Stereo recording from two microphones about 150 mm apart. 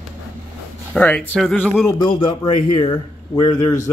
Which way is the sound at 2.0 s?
35° left (ahead or behind).